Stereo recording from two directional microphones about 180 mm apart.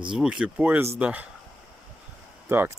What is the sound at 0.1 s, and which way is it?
Speech, 5° right (ahead or behind).